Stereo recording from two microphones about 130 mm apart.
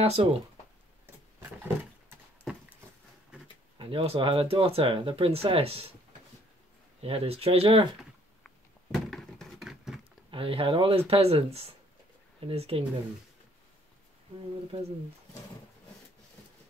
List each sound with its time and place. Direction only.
0.0 s speech: 50° right (ahead or behind)
1.0 s a sound: 15° right (ahead or behind)
3.7 s speech: 45° right (ahead or behind)
7.0 s speech: 50° right (ahead or behind)
8.0 s a sound: centre (ahead or behind)
10.3 s speech: 45° right (ahead or behind)